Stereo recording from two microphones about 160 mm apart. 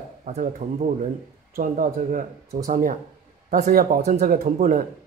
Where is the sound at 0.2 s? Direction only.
55° right (ahead or behind).